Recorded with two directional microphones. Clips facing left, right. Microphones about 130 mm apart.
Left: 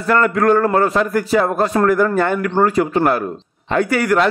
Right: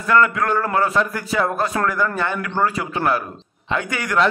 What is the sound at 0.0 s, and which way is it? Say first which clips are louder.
A man's voice: left 3 dB; 35° left (ahead or behind).